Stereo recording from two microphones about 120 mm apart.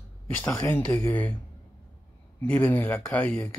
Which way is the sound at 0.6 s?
20° left (ahead or behind).